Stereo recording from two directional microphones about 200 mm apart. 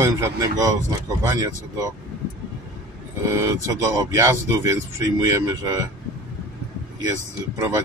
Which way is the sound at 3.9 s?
15° right (ahead or behind).